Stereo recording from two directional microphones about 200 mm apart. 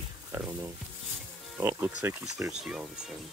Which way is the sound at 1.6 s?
10° right (ahead or behind).